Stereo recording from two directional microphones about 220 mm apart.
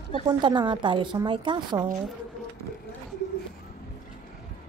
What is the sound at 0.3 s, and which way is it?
Speech, 20° right (ahead or behind).